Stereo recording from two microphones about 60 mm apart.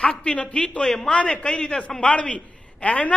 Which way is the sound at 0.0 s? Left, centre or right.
Centre.